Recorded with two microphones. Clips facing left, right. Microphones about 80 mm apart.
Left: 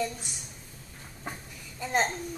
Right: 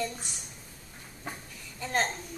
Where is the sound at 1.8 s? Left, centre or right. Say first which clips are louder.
Left 2 dB; centre.